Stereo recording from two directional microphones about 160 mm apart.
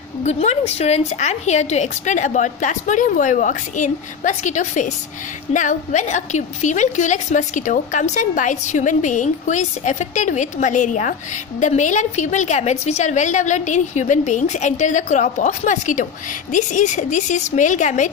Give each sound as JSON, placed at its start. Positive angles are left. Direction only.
{"t": 0.2, "sound": "a woman's voice", "side_deg": 45}